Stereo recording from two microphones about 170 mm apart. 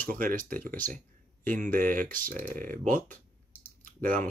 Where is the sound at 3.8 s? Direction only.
50° right (ahead or behind).